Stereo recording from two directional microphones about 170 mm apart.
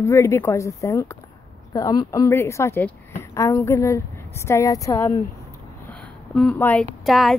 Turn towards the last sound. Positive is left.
turn(degrees=0)  # may be behind; listen again after turning